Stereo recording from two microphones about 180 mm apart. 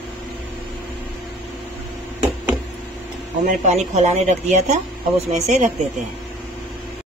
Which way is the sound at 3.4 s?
40° right (ahead or behind).